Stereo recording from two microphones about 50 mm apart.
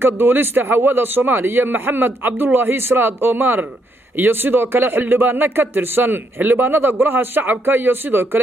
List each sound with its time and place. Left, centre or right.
0.0 s speech: right